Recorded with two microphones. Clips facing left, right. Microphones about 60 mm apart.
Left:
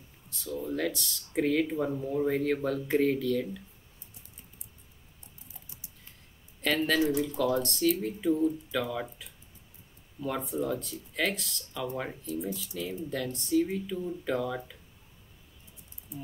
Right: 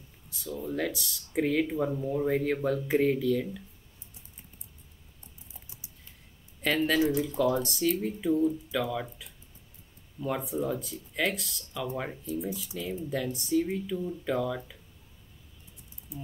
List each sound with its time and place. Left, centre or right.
0.3 s speech: centre
5.5 s typing: right
6.6 s speech: centre
16.1 s ratchet: centre